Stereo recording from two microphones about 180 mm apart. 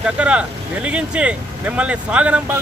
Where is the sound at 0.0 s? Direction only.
5° right (ahead or behind).